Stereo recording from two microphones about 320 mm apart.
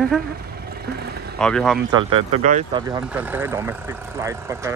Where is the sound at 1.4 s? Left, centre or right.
Centre.